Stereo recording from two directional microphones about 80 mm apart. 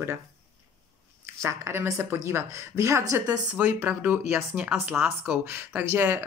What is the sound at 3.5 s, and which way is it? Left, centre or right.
Speech, right.